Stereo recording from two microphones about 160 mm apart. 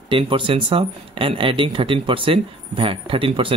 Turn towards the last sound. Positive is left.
turn(degrees=-35)  # may be behind; listen again after turning